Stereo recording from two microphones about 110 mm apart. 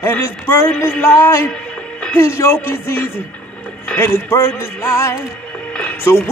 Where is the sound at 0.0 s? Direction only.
20° left (ahead or behind).